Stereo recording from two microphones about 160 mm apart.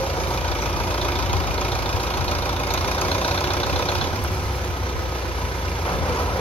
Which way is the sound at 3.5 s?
10° left (ahead or behind).